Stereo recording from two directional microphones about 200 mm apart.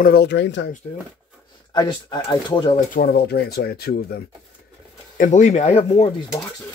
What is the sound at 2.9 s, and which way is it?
Speech, 50° left (ahead or behind).